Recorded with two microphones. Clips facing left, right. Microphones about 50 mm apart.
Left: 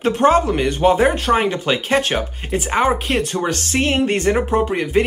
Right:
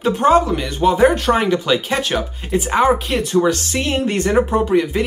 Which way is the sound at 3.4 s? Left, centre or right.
Left.